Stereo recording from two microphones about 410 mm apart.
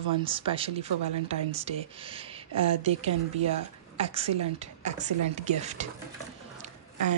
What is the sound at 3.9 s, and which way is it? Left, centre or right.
Speech, centre.